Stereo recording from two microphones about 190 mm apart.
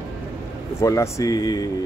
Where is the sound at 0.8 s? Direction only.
15° left (ahead or behind).